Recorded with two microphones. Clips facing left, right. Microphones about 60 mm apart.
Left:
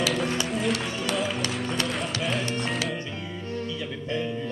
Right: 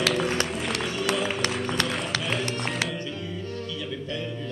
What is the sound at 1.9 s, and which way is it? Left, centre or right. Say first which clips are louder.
Run: even; centre.